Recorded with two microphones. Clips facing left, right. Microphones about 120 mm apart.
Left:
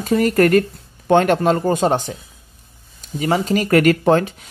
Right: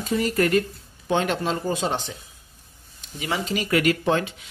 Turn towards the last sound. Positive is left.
turn(degrees=45)  # may be behind; listen again after turning